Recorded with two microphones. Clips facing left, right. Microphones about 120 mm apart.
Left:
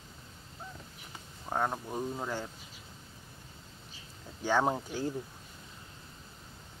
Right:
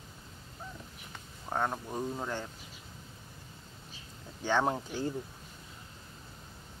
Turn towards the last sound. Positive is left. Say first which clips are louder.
# left 1 dB
turn(degrees=10)  # may be behind; listen again after turning